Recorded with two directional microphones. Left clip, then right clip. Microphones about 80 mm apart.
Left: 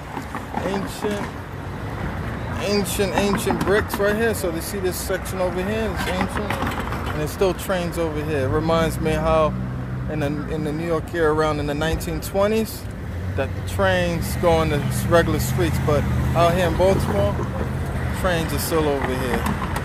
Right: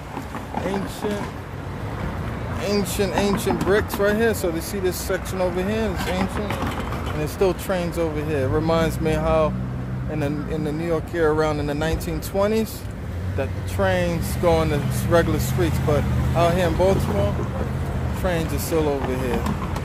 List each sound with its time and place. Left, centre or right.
2.6 s speech: right
4.0 s speech: right
5.9 s speech: centre
6.4 s speech: centre
7.2 s speech: right
16.9 s speech: left
18.2 s speech: right